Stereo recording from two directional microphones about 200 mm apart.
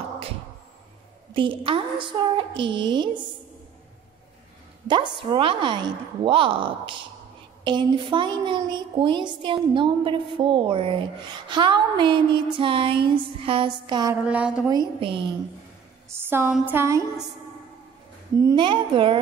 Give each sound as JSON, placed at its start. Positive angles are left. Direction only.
{"t": 1.3, "sound": "a woman's voice", "side_deg": -25}
{"t": 4.8, "sound": "a woman's voice", "side_deg": -25}
{"t": 14.2, "sound": "a woman's voice", "side_deg": -5}
{"t": 14.7, "sound": "a woman's voice", "side_deg": -25}
{"t": 16.1, "sound": "a sound", "side_deg": -10}
{"t": 18.3, "sound": "a woman's voice", "side_deg": -20}